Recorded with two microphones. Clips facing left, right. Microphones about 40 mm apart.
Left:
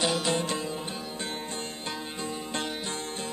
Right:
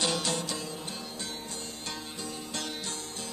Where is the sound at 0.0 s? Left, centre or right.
Centre.